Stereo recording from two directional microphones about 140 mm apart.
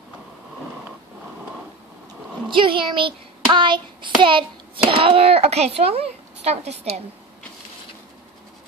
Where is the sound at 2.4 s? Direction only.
35° right (ahead or behind).